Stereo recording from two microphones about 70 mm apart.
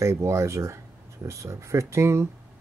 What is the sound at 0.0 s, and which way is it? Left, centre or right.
Speech, right.